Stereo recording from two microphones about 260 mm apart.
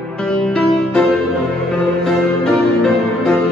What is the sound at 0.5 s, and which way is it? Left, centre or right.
Music, centre.